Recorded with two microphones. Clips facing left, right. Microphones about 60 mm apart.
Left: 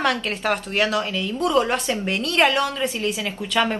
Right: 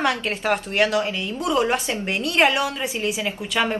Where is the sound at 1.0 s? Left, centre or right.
Centre.